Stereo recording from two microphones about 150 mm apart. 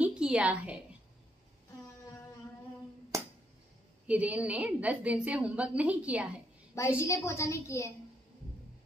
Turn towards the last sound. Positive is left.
turn(degrees=20)  # may be behind; listen again after turning